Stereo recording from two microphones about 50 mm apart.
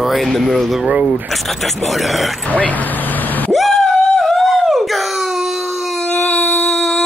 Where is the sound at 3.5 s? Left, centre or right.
Centre.